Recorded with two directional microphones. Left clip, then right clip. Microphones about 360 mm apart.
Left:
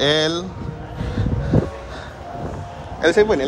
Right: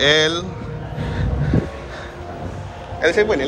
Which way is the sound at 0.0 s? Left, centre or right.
Centre.